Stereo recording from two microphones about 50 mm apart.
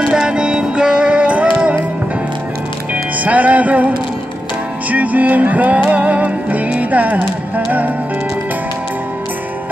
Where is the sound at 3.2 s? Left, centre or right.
Right.